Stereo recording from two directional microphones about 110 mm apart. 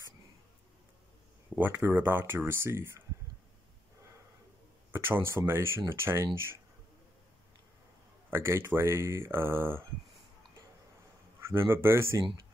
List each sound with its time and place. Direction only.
1.5 s speech: 20° right (ahead or behind)
4.9 s speech: 20° right (ahead or behind)
8.3 s speech: 25° right (ahead or behind)
11.4 s speech: 20° right (ahead or behind)